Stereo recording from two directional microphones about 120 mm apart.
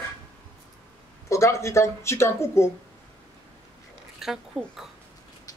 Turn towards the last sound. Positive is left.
turn(degrees=0)  # may be behind; listen again after turning